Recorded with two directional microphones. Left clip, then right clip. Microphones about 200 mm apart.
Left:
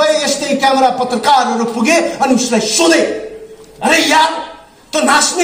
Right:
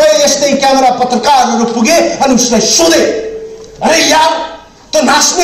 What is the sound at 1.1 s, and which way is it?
A man's voice, 15° left (ahead or behind).